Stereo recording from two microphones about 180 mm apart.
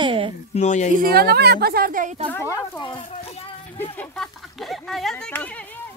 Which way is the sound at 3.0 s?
35° left (ahead or behind).